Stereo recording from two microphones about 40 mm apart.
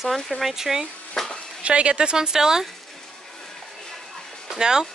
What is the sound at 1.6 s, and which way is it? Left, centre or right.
Speech, right.